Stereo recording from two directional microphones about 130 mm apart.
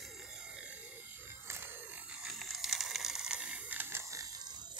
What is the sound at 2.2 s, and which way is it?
Ratchet, centre (ahead or behind).